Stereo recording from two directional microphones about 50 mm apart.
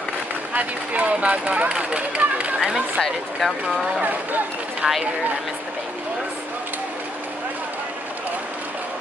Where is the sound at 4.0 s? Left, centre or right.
Right.